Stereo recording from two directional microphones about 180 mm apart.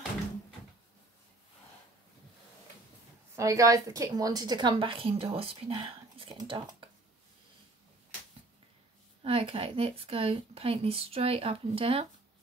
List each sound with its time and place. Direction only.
3.3 s a woman's voice: 20° right (ahead or behind)
9.2 s speech: 30° right (ahead or behind)